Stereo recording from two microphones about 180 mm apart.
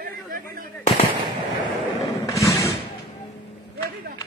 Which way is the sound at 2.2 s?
15° left (ahead or behind).